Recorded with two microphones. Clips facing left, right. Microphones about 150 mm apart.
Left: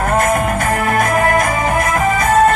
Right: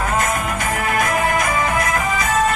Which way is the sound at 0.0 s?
45° left (ahead or behind).